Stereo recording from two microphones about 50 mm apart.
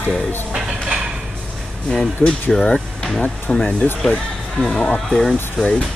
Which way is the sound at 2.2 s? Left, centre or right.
Centre.